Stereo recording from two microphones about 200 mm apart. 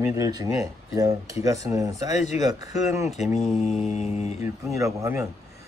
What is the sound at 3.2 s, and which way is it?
Mantra, centre (ahead or behind).